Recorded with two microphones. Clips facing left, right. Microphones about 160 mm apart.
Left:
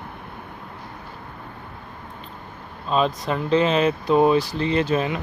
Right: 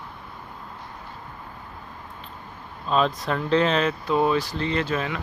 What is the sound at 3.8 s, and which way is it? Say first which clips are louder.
Speech: left 5 dB; 15° left (ahead or behind).